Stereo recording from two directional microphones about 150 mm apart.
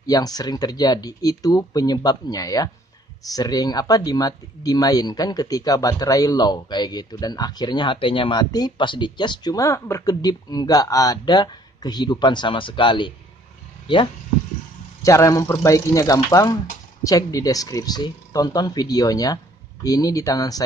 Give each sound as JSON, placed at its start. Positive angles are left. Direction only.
{"t": 0.0, "sound": "speech", "side_deg": 25}
{"t": 15.0, "sound": "speech", "side_deg": 20}